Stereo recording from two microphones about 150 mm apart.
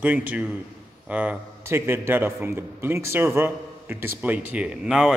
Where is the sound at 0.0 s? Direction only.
10° right (ahead or behind).